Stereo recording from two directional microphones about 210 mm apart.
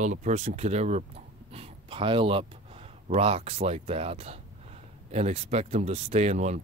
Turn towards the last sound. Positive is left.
turn(degrees=-35)  # may be behind; listen again after turning